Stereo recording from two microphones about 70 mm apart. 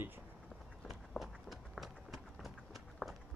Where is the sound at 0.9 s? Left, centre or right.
Centre.